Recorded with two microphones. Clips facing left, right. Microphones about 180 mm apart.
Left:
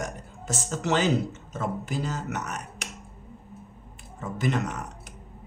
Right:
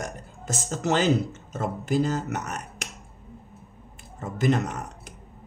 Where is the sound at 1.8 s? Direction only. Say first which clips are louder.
Right 6 dB; 45° right (ahead or behind).